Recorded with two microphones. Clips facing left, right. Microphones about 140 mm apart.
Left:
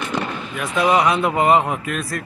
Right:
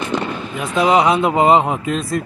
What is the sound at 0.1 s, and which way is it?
Fireworks, 25° right (ahead or behind).